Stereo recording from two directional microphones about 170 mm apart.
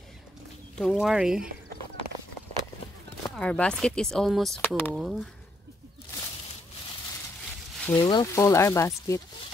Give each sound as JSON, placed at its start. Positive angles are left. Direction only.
{"t": 0.7, "sound": "speech", "side_deg": 0}
{"t": 3.3, "sound": "speech", "side_deg": 5}
{"t": 4.6, "sound": "speech", "side_deg": 10}
{"t": 4.9, "sound": "speech", "side_deg": 0}
{"t": 7.9, "sound": "speech", "side_deg": 25}